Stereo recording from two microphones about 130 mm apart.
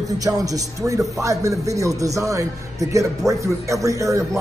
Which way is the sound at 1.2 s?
25° right (ahead or behind).